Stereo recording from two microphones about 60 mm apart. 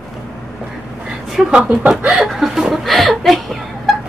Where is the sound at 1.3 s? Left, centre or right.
Centre.